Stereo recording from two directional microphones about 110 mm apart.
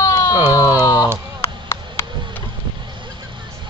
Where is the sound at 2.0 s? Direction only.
25° left (ahead or behind).